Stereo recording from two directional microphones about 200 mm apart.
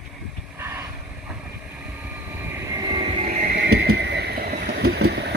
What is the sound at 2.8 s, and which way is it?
Vehicle, 25° right (ahead or behind).